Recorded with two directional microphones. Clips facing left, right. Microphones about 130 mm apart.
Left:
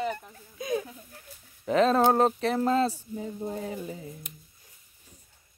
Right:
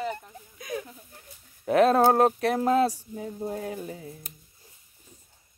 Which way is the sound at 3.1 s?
Centre (ahead or behind).